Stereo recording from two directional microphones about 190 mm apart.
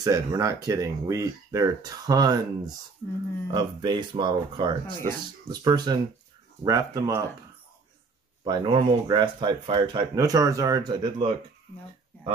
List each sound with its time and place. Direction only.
0.0 s speech: 20° right (ahead or behind)
8.5 s speech: 25° right (ahead or behind)